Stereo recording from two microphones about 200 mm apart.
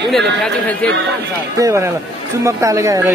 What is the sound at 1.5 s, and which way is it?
Speech, 15° right (ahead or behind).